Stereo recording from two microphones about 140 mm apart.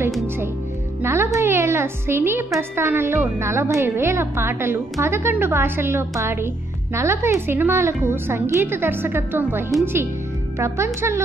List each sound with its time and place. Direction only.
1.0 s music: 15° right (ahead or behind)
2.7 s a woman's voice: 15° right (ahead or behind)